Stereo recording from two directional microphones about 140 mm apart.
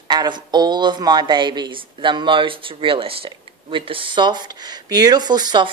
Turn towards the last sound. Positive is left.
turn(degrees=-30)  # may be behind; listen again after turning